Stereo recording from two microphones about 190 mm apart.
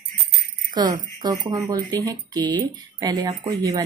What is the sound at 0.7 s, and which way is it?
Speech, 20° right (ahead or behind).